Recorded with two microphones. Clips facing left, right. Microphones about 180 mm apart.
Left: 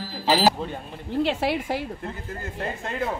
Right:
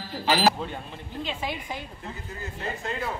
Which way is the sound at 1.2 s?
75° left (ahead or behind).